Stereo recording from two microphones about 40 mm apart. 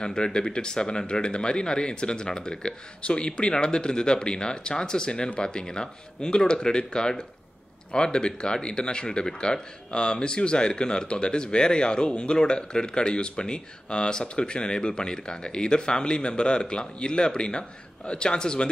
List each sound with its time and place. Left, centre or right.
0.0 s speech: centre